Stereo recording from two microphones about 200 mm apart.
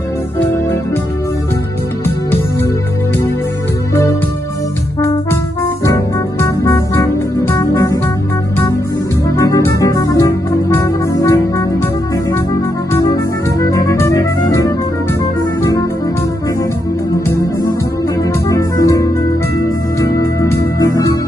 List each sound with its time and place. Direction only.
6.4 s music: 15° left (ahead or behind)
9.4 s music: 15° left (ahead or behind)
13.6 s music: 15° left (ahead or behind)
18.5 s music: 15° left (ahead or behind)